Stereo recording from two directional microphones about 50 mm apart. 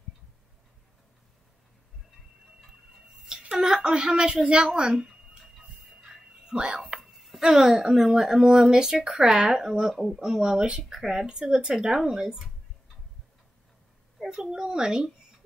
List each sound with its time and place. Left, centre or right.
3.4 s a woman's voice: centre
6.5 s whispering: centre
7.2 s speech: centre
14.2 s speech: centre